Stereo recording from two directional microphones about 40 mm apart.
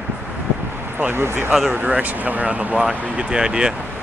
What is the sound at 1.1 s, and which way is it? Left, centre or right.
Speech, right.